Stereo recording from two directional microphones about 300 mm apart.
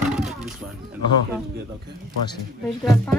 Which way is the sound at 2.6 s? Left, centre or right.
Centre.